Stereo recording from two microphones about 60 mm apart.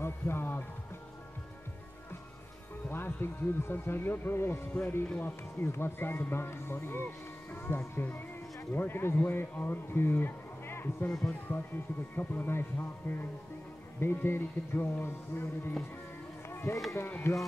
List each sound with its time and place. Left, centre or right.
0.0 s music: left
2.9 s a man's voice: left
11.1 s speech: centre
11.4 s a man's voice: left
17.3 s speech: left